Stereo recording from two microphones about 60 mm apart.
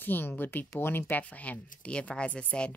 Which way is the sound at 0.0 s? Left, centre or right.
Left.